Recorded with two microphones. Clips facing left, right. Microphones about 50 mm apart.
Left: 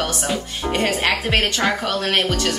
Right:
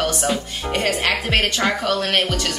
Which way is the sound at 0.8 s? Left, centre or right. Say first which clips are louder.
Even; centre.